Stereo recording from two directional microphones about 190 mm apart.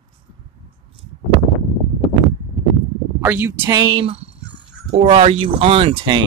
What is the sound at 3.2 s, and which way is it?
Speech, 10° right (ahead or behind).